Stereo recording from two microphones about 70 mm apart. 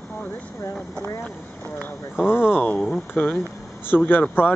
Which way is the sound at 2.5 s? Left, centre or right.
Left.